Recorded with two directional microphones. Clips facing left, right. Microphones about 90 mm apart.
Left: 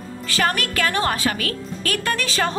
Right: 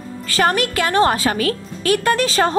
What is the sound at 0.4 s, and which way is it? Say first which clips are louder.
A woman's voice: right 4 dB; 30° right (ahead or behind).